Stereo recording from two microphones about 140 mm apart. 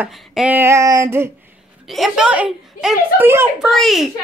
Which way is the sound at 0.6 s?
20° right (ahead or behind).